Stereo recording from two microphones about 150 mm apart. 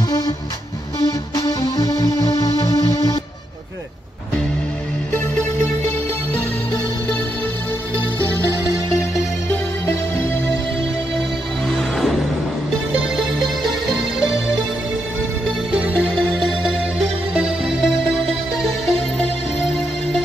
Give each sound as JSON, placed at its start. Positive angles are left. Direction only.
{"t": 1.3, "sound": "music", "side_deg": 25}
{"t": 5.1, "sound": "music", "side_deg": 10}
{"t": 11.7, "sound": "music", "side_deg": 0}
{"t": 15.7, "sound": "music", "side_deg": -5}